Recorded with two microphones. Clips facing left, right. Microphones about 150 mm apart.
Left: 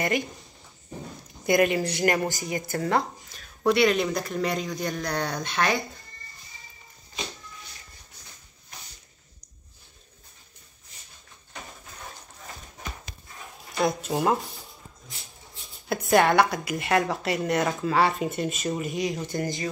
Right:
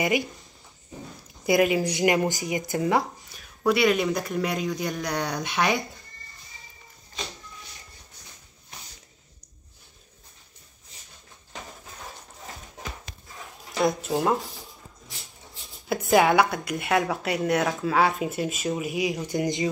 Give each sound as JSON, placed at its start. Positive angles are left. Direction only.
{"t": 1.4, "sound": "a woman's voice", "side_deg": -5}
{"t": 1.9, "sound": "speech", "side_deg": -15}
{"t": 3.3, "sound": "speech", "side_deg": -5}
{"t": 13.8, "sound": "a woman's voice", "side_deg": 0}
{"t": 15.9, "sound": "a woman's voice", "side_deg": 0}